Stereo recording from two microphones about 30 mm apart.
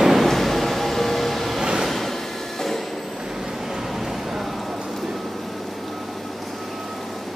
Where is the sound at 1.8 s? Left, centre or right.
Centre.